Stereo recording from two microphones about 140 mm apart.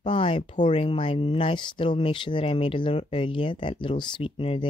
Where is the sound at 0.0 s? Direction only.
40° left (ahead or behind).